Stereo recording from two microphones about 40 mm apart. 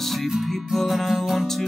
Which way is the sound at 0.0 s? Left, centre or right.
Centre.